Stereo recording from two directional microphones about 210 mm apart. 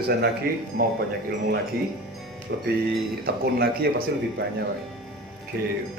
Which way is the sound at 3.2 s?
45° right (ahead or behind).